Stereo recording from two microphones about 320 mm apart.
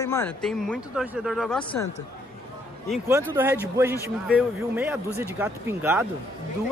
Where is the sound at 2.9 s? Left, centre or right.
Centre.